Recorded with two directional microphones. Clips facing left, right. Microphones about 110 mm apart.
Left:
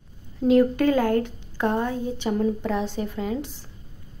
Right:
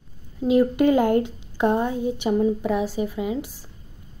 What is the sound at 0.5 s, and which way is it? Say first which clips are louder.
A woman's voice: right 1 dB; 15° right (ahead or behind).